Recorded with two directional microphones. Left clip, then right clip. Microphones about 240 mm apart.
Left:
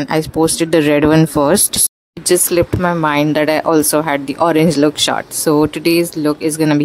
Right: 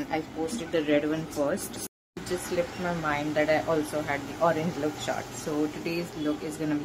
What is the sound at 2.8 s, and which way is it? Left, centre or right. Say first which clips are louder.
Speech: left 15 dB; left.